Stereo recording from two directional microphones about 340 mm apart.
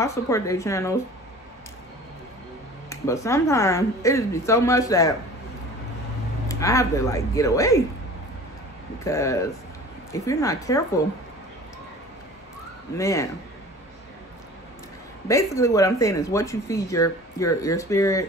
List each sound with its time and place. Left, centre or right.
0.0 s speech: centre
2.9 s speech: centre
6.5 s speech: centre
9.0 s speech: centre
12.9 s speech: centre
15.2 s speech: centre